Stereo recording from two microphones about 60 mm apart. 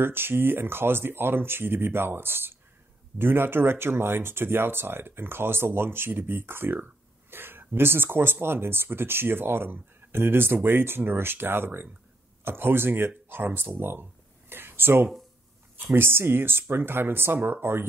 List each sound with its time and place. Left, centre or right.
0.0 s speech: right
14.5 s a sound: right
15.8 s speech: right